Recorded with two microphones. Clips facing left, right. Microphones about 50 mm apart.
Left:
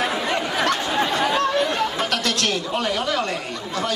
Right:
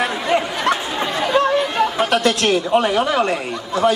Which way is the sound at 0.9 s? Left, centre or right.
Centre.